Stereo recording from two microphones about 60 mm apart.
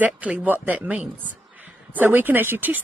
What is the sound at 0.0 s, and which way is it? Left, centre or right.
Speech, right.